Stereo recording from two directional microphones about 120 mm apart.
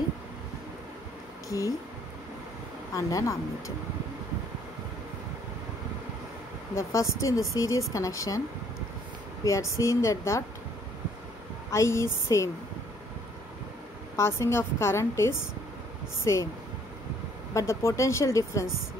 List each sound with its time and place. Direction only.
1.5 s a woman's voice: 30° left (ahead or behind)
2.9 s a woman's voice: 25° left (ahead or behind)
6.7 s a woman's voice: 25° left (ahead or behind)
9.4 s a woman's voice: 25° left (ahead or behind)
11.7 s a woman's voice: 25° left (ahead or behind)
14.1 s a woman's voice: 20° left (ahead or behind)
17.6 s a woman's voice: 25° left (ahead or behind)